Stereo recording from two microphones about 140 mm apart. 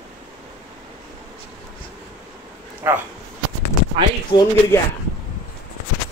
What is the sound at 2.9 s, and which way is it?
Speech, 15° right (ahead or behind).